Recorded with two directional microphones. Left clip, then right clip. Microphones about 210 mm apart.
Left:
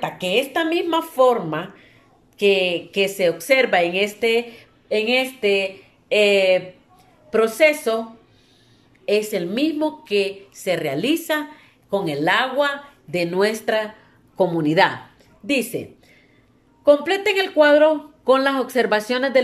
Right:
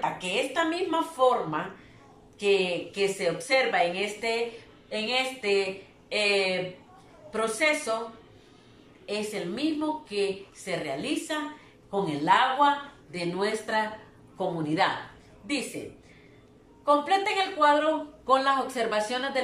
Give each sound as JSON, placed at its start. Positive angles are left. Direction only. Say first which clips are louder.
{"t": 0.0, "sound": "a woman's voice", "louder": "left 7 dB", "side_deg": 50}
{"t": 9.0, "sound": "a woman's voice", "louder": "left 11 dB", "side_deg": 50}
{"t": 16.8, "sound": "a woman's voice", "louder": "left 7 dB", "side_deg": 50}